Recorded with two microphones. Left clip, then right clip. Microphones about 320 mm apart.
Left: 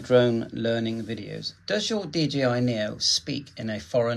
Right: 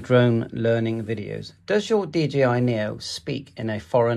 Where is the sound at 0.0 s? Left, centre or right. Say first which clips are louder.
Right 1 dB; centre.